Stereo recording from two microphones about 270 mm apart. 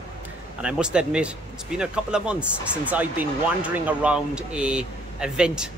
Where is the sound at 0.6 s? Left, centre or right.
Centre.